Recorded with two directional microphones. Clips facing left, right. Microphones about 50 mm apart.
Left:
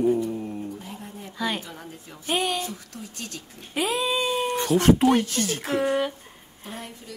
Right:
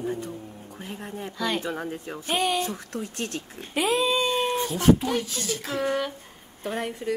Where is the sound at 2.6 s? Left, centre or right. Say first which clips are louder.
Right 4 dB; right.